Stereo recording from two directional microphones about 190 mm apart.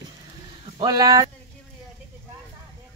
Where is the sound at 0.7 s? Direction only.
20° right (ahead or behind).